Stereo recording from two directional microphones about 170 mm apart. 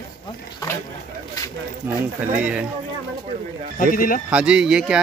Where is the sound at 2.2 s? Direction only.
10° right (ahead or behind).